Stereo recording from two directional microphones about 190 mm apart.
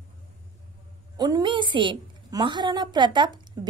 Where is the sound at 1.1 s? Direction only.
20° right (ahead or behind).